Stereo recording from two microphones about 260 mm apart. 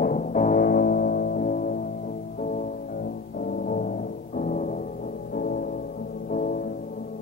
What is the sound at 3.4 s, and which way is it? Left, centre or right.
Music, left.